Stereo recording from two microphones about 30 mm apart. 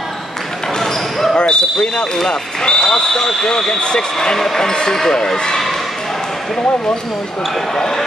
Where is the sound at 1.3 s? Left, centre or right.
Left.